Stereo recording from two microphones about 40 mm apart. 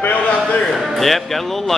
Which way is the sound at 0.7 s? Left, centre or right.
Centre.